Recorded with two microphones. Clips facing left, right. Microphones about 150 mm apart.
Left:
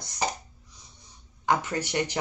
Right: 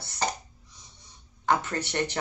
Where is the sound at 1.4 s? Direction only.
10° left (ahead or behind).